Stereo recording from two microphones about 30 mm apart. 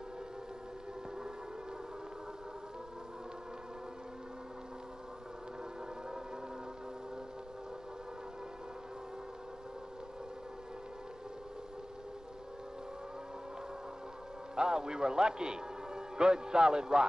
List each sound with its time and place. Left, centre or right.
14.5 s a man's voice: right